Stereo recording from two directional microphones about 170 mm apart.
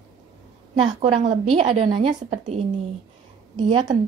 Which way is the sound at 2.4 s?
40° right (ahead or behind).